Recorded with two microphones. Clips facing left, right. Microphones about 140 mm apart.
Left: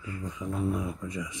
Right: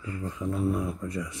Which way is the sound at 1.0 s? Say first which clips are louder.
Right 2 dB; 15° left (ahead or behind).